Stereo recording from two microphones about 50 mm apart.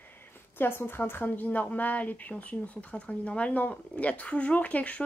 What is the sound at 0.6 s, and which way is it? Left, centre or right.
A woman's voice, left.